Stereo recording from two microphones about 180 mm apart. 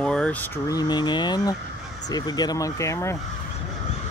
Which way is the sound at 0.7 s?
20° left (ahead or behind).